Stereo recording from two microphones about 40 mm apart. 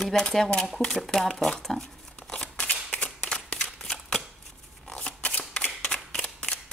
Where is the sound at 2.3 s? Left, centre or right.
Left.